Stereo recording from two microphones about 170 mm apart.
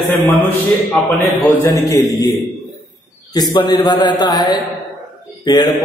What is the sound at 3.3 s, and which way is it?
A man's voice, 25° left (ahead or behind).